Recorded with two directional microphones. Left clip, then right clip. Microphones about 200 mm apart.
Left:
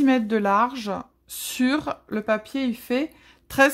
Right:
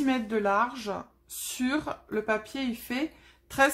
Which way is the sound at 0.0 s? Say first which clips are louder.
Left 6 dB; 45° left (ahead or behind).